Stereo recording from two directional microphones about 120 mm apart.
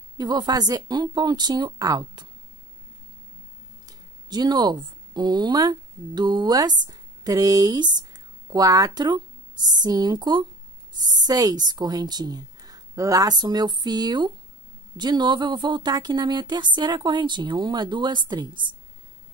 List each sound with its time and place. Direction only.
0.2 s speech: 35° right (ahead or behind)
3.8 s speech: 35° right (ahead or behind)